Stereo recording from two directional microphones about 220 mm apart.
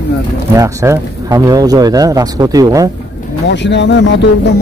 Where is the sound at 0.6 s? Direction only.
15° right (ahead or behind).